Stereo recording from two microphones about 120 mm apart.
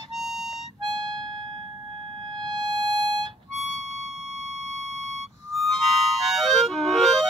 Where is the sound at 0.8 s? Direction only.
40° right (ahead or behind).